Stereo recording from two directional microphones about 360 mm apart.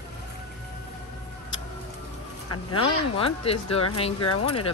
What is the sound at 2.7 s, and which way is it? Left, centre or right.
Speech, centre.